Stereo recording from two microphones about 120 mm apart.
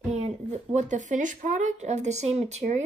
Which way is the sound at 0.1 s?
75° right (ahead or behind).